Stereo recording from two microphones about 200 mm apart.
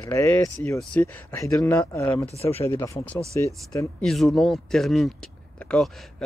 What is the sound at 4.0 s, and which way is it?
Speech, centre (ahead or behind).